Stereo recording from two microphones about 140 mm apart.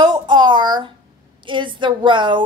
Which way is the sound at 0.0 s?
30° right (ahead or behind).